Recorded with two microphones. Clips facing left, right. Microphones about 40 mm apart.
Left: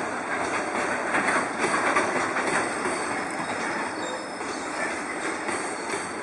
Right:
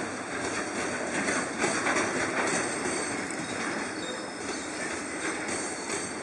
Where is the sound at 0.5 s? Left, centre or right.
Centre.